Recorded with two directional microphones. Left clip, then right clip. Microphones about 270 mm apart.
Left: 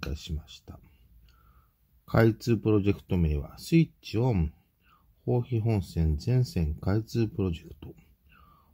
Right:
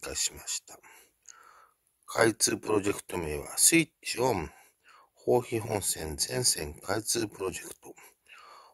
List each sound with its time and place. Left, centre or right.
0.1 s speech: right